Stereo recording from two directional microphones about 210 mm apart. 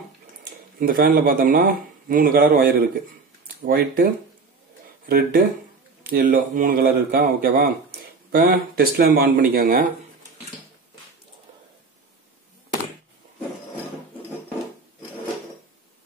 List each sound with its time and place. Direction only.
0.7 s speech: 45° right (ahead or behind)